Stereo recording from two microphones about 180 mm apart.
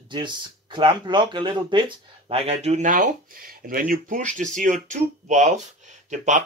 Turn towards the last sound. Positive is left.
turn(degrees=-45)  # may be behind; listen again after turning